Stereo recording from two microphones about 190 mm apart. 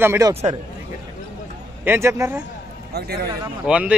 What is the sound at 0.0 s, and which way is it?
Speech, 15° right (ahead or behind).